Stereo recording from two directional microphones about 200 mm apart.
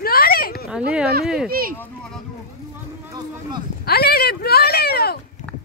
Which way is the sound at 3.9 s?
50° left (ahead or behind).